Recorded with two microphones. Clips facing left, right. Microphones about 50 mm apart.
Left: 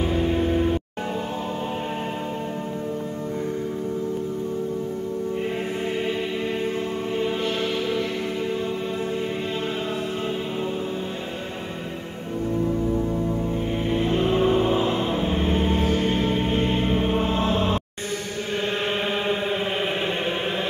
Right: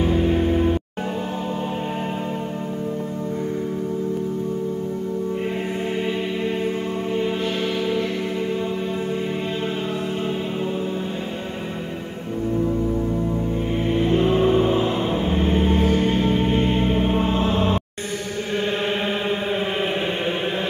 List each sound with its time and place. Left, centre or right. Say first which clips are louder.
0.0 s music: right 3 dB; centre
14.3 s vehicle: right 2 dB; centre
15.0 s music: right 2 dB; centre
15.3 s music: right 5 dB; right
16.8 s music: right 2 dB; centre
17.5 s music: right 2 dB; centre